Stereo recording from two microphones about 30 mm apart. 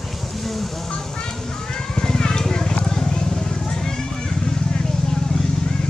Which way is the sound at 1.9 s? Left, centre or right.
Left.